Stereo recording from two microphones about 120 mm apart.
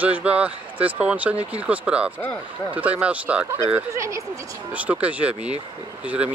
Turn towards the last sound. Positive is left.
turn(degrees=-10)  # may be behind; listen again after turning